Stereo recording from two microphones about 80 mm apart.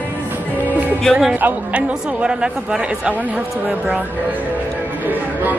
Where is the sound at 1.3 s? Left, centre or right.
Right.